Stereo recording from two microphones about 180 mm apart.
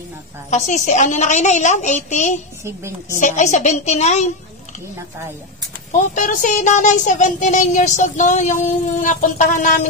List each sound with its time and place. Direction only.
0.5 s a woman's voice: 40° left (ahead or behind)
2.6 s a woman's voice: 15° right (ahead or behind)
3.2 s a woman's voice: 45° left (ahead or behind)
6.1 s speech: 45° left (ahead or behind)